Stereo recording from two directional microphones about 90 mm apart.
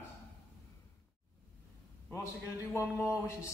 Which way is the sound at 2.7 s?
25° left (ahead or behind).